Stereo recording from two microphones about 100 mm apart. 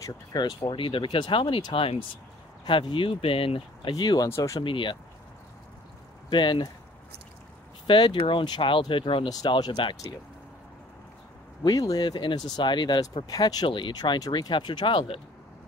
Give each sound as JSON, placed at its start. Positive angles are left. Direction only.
{"t": 0.0, "sound": "speech", "side_deg": 45}
{"t": 0.7, "sound": "speech", "side_deg": 60}
{"t": 3.9, "sound": "speech", "side_deg": 45}
{"t": 4.6, "sound": "speech", "side_deg": 55}
{"t": 6.3, "sound": "speech", "side_deg": 50}
{"t": 7.8, "sound": "speech", "side_deg": 55}
{"t": 9.3, "sound": "speech", "side_deg": 45}
{"t": 11.6, "sound": "speech", "side_deg": 40}
{"t": 13.7, "sound": "speech", "side_deg": 55}